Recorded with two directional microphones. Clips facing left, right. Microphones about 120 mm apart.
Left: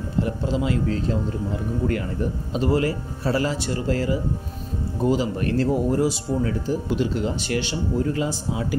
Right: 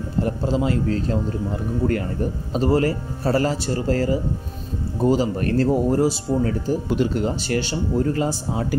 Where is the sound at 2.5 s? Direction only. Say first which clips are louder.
Right 3 dB; 35° right (ahead or behind).